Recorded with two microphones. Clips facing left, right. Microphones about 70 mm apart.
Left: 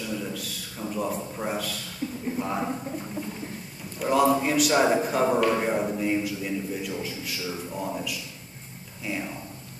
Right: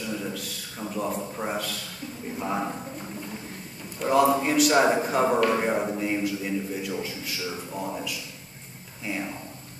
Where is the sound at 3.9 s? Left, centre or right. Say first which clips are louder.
Right 1 dB; centre.